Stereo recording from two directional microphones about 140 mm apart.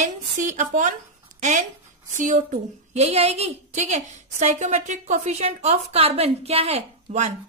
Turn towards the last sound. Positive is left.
turn(degrees=-55)  # may be behind; listen again after turning